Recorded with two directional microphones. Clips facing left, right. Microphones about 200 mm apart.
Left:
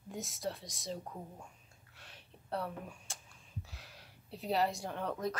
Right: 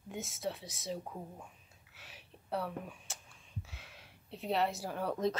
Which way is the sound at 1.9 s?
5° right (ahead or behind).